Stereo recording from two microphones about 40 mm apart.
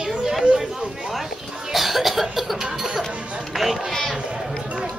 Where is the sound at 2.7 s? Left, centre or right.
Centre.